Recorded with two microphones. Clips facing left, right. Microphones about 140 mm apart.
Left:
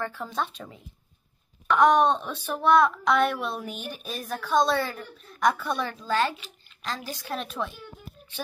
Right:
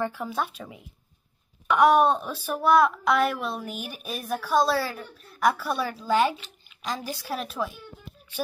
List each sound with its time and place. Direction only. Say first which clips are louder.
0.0 s speech: right 2 dB; 10° right (ahead or behind)